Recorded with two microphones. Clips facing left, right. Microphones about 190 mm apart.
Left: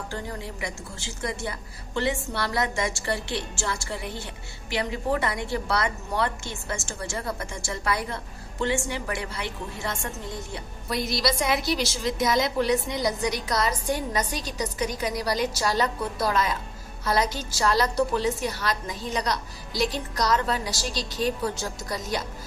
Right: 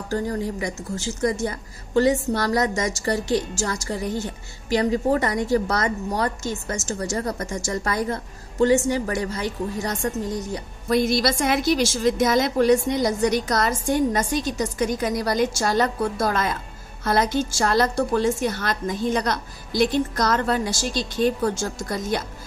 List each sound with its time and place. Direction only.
0.1 s a woman's voice: 40° right (ahead or behind)